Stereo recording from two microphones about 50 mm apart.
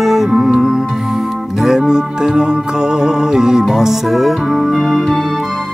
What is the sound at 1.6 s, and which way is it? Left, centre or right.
Music, centre.